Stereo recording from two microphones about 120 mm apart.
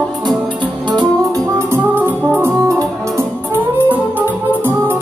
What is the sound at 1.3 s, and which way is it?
Music, 20° right (ahead or behind).